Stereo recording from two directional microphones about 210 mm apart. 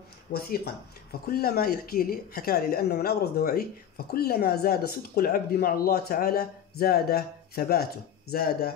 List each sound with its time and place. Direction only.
0.3 s speech: 50° left (ahead or behind)